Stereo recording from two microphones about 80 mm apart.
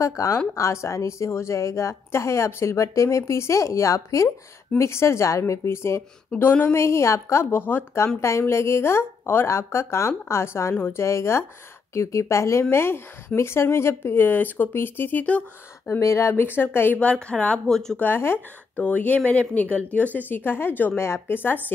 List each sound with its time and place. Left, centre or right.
0.0 s a woman's voice: left; by 15.4 s centre
16.0 s speech: left
17.0 s speech: centre
17.9 s speech: left